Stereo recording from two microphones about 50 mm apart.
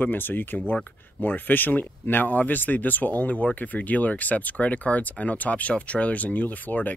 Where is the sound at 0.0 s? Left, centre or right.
Left.